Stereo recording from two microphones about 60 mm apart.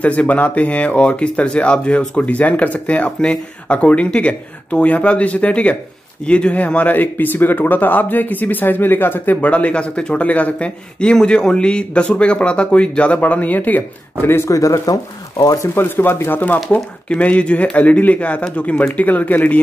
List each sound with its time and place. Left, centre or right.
0.0 s speech: left
14.2 s speech: left
14.5 s speech: left
15.7 s speech: left